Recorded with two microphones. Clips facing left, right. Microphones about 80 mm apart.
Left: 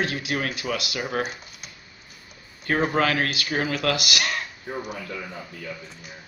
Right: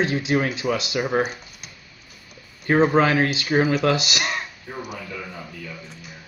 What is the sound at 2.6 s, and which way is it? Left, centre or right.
Speech, right.